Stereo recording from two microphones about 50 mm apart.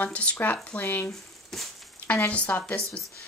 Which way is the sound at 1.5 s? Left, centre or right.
Centre.